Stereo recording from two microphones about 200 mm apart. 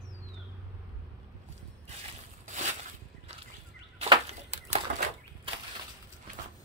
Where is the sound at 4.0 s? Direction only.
30° right (ahead or behind).